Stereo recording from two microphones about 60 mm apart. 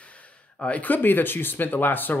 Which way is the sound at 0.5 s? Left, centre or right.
Left.